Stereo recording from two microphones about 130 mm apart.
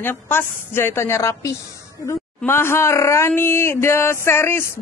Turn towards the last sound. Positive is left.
turn(degrees=20)  # may be behind; listen again after turning